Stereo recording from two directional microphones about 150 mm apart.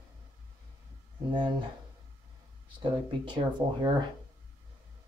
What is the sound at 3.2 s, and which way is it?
Speech, 30° right (ahead or behind).